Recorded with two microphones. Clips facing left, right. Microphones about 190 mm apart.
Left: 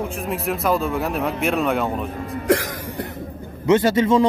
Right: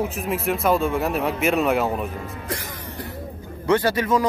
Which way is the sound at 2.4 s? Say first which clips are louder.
Left 11 dB; 80° left.